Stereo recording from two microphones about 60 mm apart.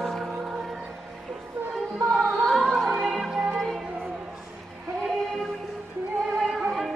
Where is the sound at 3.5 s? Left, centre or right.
Centre.